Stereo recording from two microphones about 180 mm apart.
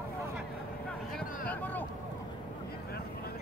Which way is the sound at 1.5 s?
10° left (ahead or behind).